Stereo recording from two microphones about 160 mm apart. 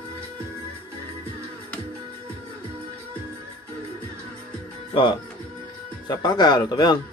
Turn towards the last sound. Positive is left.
turn(degrees=25)  # may be behind; listen again after turning